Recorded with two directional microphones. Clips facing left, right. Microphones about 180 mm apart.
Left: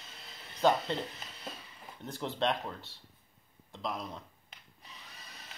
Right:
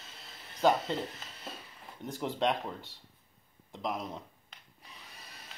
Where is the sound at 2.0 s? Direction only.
10° right (ahead or behind).